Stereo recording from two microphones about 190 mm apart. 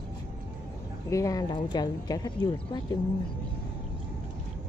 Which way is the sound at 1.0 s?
15° left (ahead or behind).